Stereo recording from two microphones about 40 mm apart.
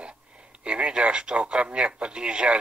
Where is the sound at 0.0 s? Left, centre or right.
Right.